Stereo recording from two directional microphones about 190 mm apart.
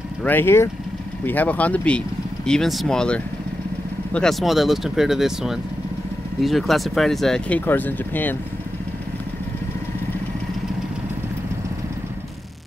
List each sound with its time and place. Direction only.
0.2 s speech: 10° left (ahead or behind)